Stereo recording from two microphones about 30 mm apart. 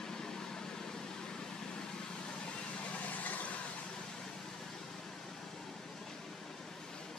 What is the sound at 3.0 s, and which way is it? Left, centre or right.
Vehicle, left.